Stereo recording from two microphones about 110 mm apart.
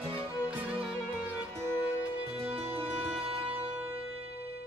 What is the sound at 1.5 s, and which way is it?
Music, 20° right (ahead or behind).